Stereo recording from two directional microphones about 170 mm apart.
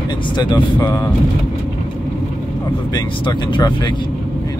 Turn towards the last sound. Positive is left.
turn(degrees=25)  # may be behind; listen again after turning